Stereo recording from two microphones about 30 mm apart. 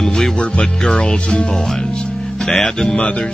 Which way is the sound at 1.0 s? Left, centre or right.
Left.